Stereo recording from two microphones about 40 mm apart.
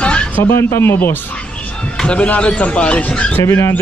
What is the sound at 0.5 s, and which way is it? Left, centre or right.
Speech, left.